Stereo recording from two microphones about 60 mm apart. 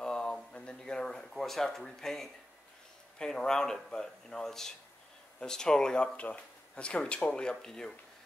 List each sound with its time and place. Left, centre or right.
0.0 s a sound: centre
3.2 s speech: centre
6.1 s speech: left